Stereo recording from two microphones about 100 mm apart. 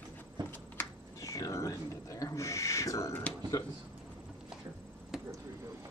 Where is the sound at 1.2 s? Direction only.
30° left (ahead or behind).